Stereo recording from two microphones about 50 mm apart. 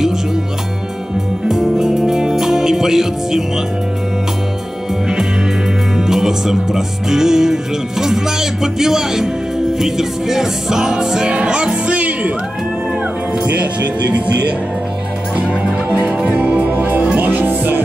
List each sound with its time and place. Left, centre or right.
1.5 s music: centre
5.9 s speech: centre
8.0 s music: centre; by 12.3 s right
15.9 s music: right